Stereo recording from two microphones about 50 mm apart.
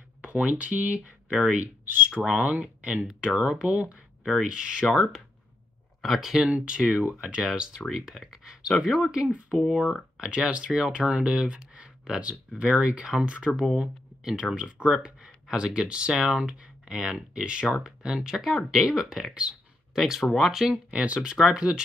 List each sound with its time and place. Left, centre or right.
0.2 s speech: right
4.2 s speech: centre
4.5 s speech: centre
5.9 s speech: centre
6.5 s speech: centre
20.7 s speech: right